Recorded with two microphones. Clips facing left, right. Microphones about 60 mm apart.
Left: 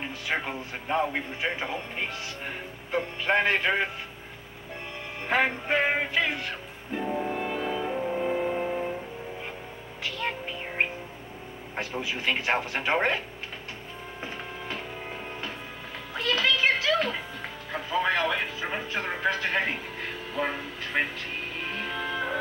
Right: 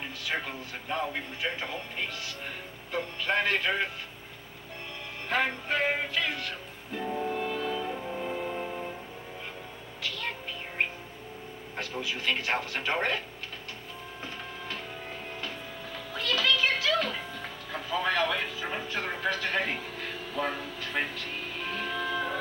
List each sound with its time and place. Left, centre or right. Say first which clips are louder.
0.3 s speech: left 3 dB; left
5.3 s music: left 4 dB; left
10.0 s music: left 4 dB; left
10.8 s bird: left 3 dB; left
11.7 s speech: left 3 dB; left
16.1 s a sound: left 2 dB; left
17.8 s a sound: left 2 dB; left
18.7 s music: left 2 dB; left
20.3 s train: left 2 dB; left
21.5 s music: right 1 dB; left